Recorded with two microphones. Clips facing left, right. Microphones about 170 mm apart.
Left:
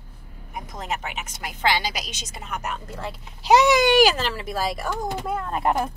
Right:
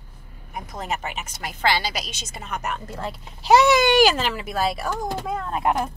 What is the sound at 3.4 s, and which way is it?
Speech, 15° left (ahead or behind).